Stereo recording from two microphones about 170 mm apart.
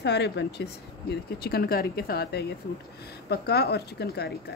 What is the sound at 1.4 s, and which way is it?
A woman's voice, 65° left (ahead or behind).